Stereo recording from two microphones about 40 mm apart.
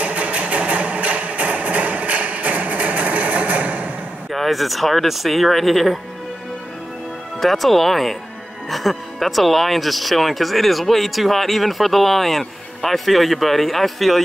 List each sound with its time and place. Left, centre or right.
0.0 s a sound: right
4.3 s speech: centre
7.3 s speech: centre